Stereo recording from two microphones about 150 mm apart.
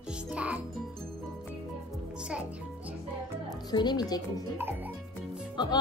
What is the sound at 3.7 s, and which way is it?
Speech, 30° left (ahead or behind).